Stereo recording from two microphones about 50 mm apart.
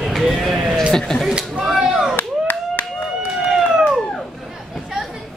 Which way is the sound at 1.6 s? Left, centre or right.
Centre.